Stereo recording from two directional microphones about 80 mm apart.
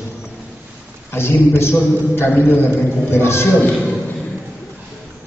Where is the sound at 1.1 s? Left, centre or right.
Left.